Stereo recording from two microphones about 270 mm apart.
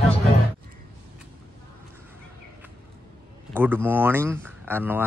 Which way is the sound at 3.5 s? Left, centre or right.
Centre.